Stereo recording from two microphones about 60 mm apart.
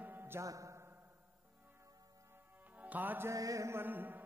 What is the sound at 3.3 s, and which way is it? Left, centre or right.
Mantra, right.